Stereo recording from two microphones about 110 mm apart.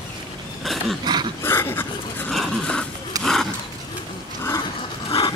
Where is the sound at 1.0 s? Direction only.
40° right (ahead or behind).